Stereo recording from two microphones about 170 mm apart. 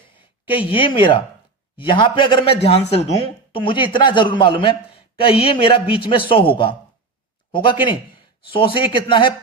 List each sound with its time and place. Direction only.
0.1 s a woman's voice: 30° left (ahead or behind)